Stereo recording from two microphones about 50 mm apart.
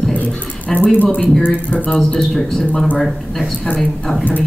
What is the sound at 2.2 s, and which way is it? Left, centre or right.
A woman's voice, centre.